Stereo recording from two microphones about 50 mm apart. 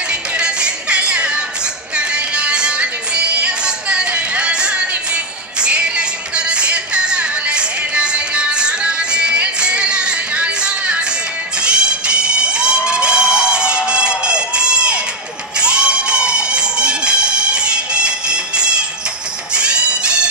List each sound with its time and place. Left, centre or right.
0.1 s music: right
15.5 s a sound: centre
19.5 s music: centre